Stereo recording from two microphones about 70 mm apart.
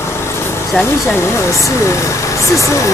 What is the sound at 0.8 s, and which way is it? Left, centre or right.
Speech, left.